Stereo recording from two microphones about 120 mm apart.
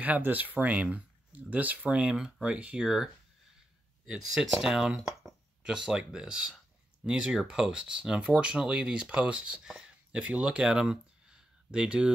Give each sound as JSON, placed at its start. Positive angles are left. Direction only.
{"t": 0.0, "sound": "speech", "side_deg": -15}
{"t": 4.1, "sound": "speech", "side_deg": -5}